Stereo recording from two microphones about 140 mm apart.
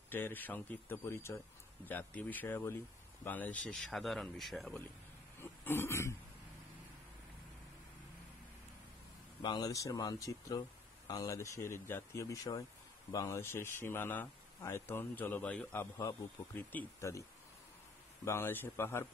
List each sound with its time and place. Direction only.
0.1 s speech: 15° left (ahead or behind)
5.4 s a sound: 15° left (ahead or behind)
9.4 s speech: 30° left (ahead or behind)
18.2 s speech: 15° left (ahead or behind)